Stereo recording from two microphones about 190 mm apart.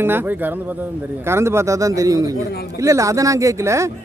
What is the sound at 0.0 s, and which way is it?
Speech, 10° right (ahead or behind).